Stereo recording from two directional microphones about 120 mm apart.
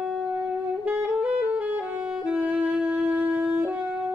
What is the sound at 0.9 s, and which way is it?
Saxophone, 10° right (ahead or behind).